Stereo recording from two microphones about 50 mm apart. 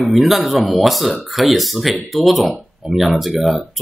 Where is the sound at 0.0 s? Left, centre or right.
Centre.